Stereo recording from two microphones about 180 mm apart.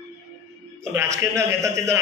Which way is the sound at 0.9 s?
15° right (ahead or behind).